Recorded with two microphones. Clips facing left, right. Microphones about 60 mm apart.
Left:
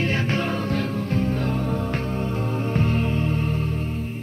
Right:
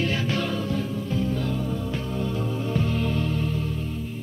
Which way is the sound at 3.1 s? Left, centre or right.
Left.